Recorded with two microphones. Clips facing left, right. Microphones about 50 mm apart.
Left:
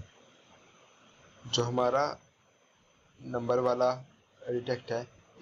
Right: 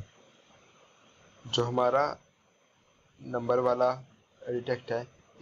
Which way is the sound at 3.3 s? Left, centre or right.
Centre.